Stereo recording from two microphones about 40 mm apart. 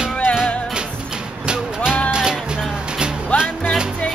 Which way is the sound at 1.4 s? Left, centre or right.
Centre.